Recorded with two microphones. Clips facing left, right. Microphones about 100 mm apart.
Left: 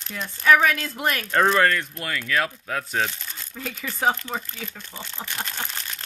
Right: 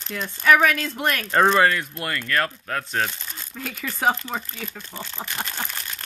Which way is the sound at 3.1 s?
10° right (ahead or behind).